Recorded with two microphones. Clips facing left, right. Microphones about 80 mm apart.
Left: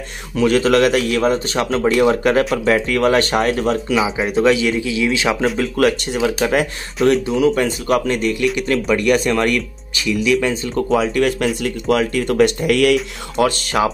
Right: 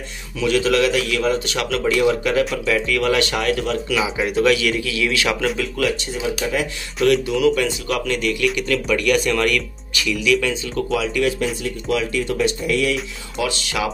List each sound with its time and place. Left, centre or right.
0.4 s a man's voice: left
5.6 s speech: left
7.1 s speech: left
11.3 s speech: left
13.4 s speech: left